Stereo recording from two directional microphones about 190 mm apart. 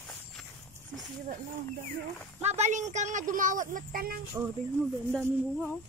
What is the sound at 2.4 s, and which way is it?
Speech, 35° right (ahead or behind).